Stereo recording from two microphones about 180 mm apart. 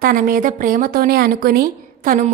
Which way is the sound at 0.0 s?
50° right (ahead or behind).